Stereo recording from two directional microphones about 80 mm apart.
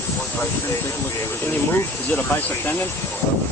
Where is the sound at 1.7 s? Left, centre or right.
Left.